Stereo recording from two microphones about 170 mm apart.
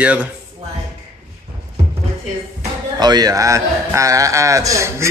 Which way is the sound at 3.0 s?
25° right (ahead or behind).